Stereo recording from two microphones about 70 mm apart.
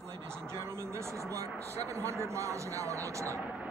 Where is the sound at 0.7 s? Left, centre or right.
Right.